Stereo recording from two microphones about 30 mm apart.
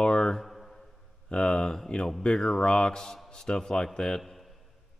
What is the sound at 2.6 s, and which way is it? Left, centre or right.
Speech, left.